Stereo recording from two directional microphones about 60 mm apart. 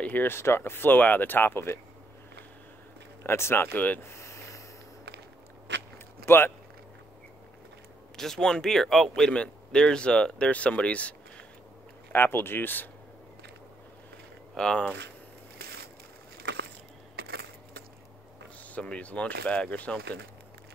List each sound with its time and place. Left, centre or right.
0.0 s a sound: left
0.3 s speech: left
3.3 s speech: left
4.0 s a sound: left
6.2 s speech: left
8.2 s speech: centre
9.3 s speech: centre
12.1 s speech: left
14.6 s speech: centre
18.6 s speech: left